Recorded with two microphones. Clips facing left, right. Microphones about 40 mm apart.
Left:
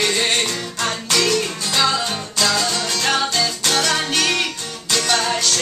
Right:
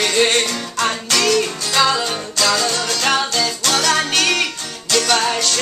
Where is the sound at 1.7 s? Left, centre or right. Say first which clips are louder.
Right 3 dB; centre.